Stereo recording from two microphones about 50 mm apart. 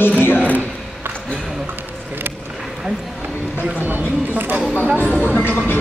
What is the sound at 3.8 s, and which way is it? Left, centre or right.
Speech, right.